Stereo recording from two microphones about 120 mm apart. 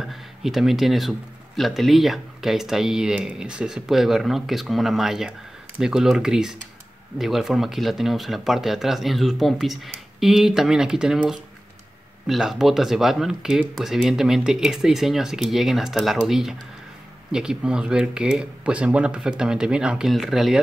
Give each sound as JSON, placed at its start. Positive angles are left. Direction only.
{"t": 0.0, "sound": "speech", "side_deg": 0}